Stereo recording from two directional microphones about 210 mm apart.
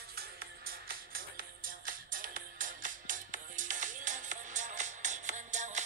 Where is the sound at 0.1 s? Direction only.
45° right (ahead or behind).